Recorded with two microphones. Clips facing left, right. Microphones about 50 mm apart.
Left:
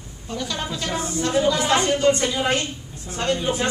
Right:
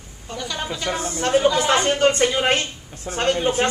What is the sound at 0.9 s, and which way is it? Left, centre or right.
A woman's voice, right.